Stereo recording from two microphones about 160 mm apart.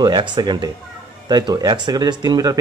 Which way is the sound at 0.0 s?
30° right (ahead or behind).